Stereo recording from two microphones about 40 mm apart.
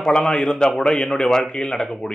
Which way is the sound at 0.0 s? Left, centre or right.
Centre.